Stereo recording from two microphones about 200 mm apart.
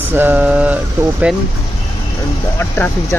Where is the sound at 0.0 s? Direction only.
10° right (ahead or behind).